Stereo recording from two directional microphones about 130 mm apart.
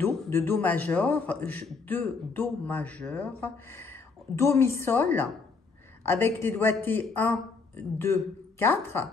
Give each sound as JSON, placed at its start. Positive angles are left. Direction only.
{"t": 0.3, "sound": "speech", "side_deg": 15}